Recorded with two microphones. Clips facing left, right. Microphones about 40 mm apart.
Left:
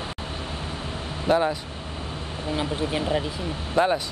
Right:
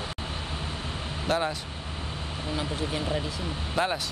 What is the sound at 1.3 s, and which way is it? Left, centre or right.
Speech, centre.